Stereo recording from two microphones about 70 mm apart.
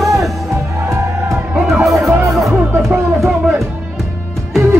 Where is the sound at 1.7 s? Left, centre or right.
Centre.